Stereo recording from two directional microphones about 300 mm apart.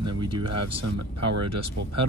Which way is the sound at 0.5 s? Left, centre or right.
Right.